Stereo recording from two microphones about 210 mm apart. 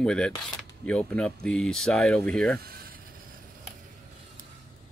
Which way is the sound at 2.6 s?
45° right (ahead or behind).